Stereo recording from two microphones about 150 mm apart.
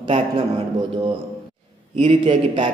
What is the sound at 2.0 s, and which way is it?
Speech, 40° right (ahead or behind).